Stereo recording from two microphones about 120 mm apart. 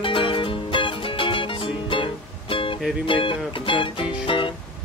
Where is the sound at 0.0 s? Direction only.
45° left (ahead or behind).